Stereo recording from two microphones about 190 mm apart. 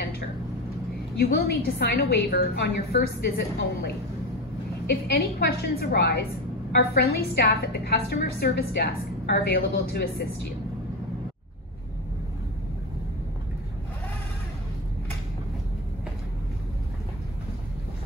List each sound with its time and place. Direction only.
1.2 s a woman's voice: 55° left (ahead or behind)